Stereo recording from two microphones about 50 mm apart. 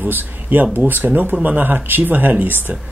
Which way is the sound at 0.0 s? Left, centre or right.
Right.